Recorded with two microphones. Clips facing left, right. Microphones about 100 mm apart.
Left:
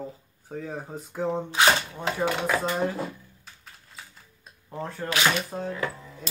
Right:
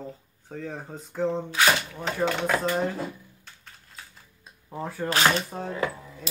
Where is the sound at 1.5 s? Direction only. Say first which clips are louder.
Left 4 dB; 25° left (ahead or behind).